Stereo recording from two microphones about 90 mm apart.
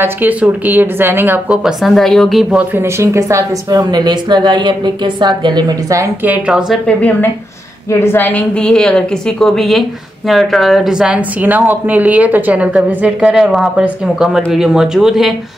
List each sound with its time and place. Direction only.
0.0 s speech: 20° right (ahead or behind)
1.6 s a woman's voice: 5° right (ahead or behind)
2.8 s a woman's voice: 35° right (ahead or behind)
3.9 s a woman's voice: 55° right (ahead or behind)
5.9 s a woman's voice: 35° right (ahead or behind)
6.2 s a woman's voice: 15° right (ahead or behind)
6.9 s a woman's voice: 20° left (ahead or behind)
7.9 s a woman's voice: 30° left (ahead or behind); by 15.3 s 5° right (ahead or behind)